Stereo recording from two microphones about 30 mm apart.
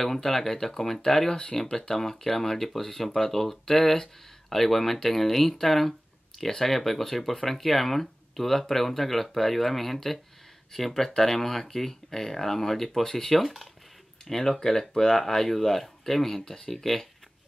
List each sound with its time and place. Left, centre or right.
0.0 s speech: centre
1.3 s speech: left
1.7 s speech: centre
14.2 s speech: centre